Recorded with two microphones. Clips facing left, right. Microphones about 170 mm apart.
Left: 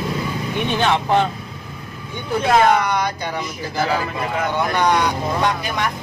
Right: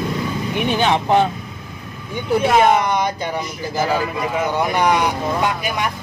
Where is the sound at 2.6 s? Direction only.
20° right (ahead or behind).